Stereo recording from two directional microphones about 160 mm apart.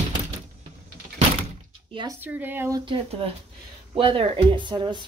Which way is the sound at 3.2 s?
35° right (ahead or behind).